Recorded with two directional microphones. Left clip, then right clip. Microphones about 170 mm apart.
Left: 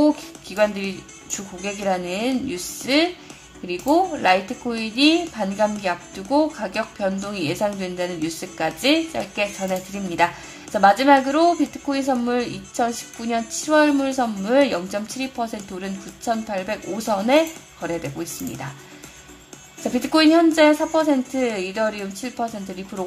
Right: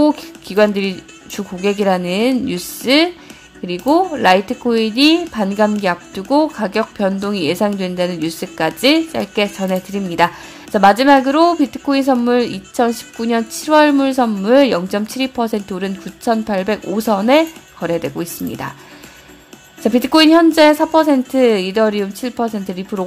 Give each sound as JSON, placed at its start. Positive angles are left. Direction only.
{"t": 0.0, "sound": "a woman's voice", "side_deg": -35}
{"t": 19.8, "sound": "a woman's voice", "side_deg": -40}